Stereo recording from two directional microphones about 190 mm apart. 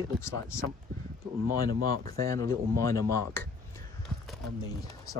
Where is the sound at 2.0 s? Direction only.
15° left (ahead or behind).